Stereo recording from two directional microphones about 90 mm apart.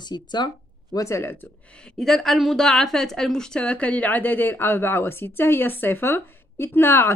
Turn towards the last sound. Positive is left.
turn(degrees=25)  # may be behind; listen again after turning